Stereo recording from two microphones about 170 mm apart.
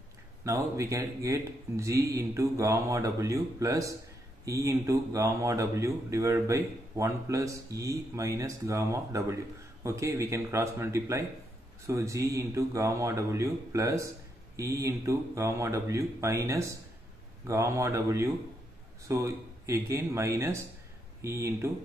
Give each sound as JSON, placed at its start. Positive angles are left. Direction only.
{"t": 0.4, "sound": "a man's voice", "side_deg": -20}